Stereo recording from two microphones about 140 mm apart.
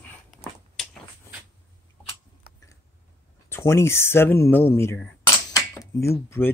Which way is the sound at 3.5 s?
20° left (ahead or behind).